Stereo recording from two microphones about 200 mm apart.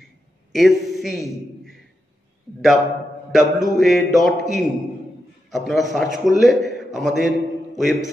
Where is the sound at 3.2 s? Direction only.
Centre (ahead or behind).